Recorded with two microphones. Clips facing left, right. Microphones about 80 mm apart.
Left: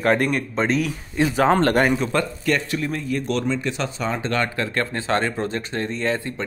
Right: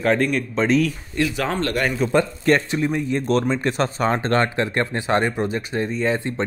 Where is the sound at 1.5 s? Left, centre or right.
Left.